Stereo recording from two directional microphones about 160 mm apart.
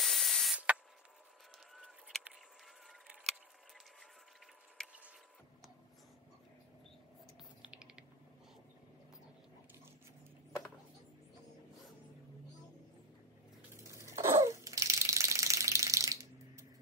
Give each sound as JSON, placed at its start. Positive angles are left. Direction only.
{"t": 0.0, "sound": "spray", "side_deg": 0}
{"t": 2.9, "sound": "a sound", "side_deg": 0}
{"t": 7.6, "sound": "typing", "side_deg": -5}
{"t": 13.7, "sound": "ratchet", "side_deg": -20}